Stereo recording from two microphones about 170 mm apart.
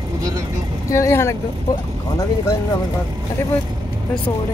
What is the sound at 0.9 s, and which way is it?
Speech, 15° left (ahead or behind).